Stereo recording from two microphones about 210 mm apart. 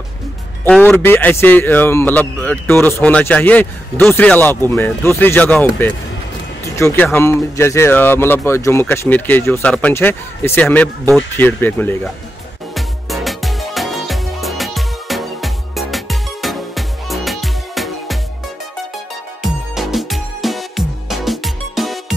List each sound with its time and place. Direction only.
0.7 s a man's voice: 5° left (ahead or behind)
12.7 s music: centre (ahead or behind)
19.4 s music: centre (ahead or behind)